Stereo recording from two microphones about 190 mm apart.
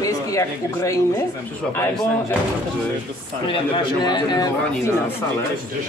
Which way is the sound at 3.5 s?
25° left (ahead or behind).